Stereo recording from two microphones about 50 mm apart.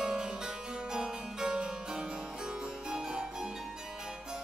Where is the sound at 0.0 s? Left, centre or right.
Centre.